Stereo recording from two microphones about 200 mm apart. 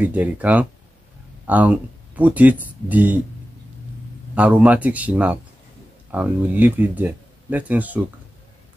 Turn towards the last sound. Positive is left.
turn(degrees=-10)  # may be behind; listen again after turning